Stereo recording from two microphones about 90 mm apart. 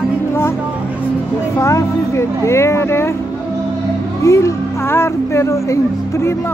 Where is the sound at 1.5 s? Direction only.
35° left (ahead or behind).